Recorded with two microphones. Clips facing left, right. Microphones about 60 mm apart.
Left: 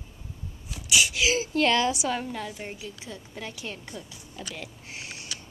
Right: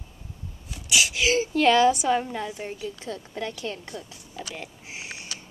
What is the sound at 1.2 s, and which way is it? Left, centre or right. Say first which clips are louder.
Speech: right 2 dB; centre.